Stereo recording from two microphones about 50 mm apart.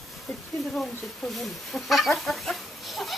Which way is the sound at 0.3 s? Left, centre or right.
Centre.